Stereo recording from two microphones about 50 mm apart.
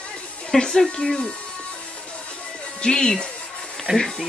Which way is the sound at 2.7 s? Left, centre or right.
Centre.